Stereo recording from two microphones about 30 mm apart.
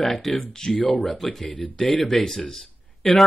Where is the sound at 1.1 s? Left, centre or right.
Centre.